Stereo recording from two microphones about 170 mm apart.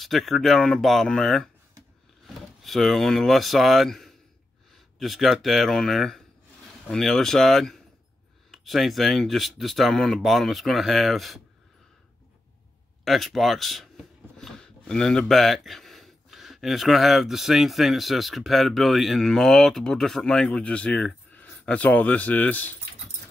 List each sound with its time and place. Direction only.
0.0 s speech: centre (ahead or behind)
13.0 s speech: centre (ahead or behind)